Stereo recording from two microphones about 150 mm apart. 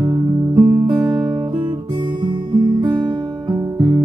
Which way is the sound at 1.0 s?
15° right (ahead or behind).